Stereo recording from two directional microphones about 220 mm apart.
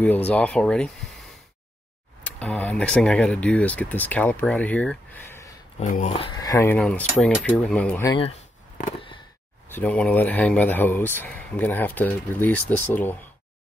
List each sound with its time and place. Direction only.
0.0 s speech: 10° left (ahead or behind)
2.3 s speech: 5° left (ahead or behind)
5.8 s speech: 35° left (ahead or behind); by 8.1 s 10° left (ahead or behind)
9.7 s speech: 10° left (ahead or behind)